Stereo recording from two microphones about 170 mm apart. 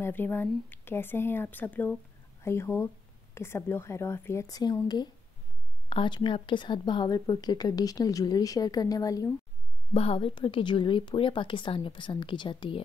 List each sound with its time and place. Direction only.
0.0 s a woman's voice: 10° left (ahead or behind)
9.9 s a woman's voice: 35° left (ahead or behind)